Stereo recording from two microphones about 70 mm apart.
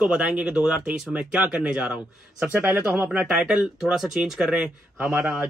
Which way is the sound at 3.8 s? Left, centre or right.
Centre.